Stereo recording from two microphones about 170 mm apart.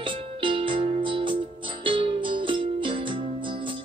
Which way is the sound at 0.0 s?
30° right (ahead or behind).